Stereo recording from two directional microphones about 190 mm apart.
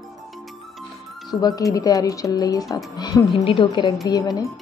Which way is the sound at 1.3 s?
20° left (ahead or behind).